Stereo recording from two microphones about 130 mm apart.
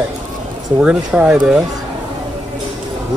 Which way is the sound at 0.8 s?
10° right (ahead or behind).